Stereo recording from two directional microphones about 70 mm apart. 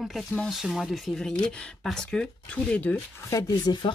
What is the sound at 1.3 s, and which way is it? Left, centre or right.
Speech, centre.